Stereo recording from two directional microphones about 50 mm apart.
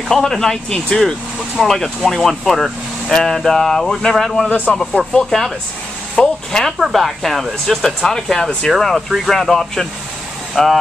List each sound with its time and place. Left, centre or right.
0.1 s speech: centre
4.5 s a man's voice: left
5.1 s speech: centre
6.8 s speech: centre
8.0 s speech: centre
8.6 s speech: centre